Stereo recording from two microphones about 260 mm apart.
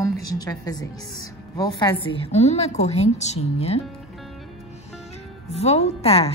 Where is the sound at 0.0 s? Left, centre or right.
Centre.